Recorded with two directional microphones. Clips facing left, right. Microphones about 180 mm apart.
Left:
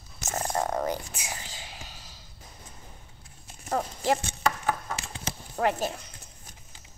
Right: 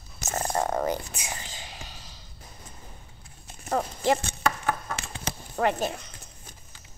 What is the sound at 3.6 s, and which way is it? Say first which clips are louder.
Clip-clop: right 2 dB; 5° left (ahead or behind).